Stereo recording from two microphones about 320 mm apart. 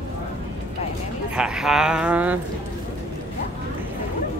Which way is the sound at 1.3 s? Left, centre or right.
Centre.